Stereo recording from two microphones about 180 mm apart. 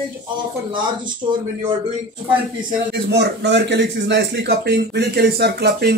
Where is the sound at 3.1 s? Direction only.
75° right (ahead or behind).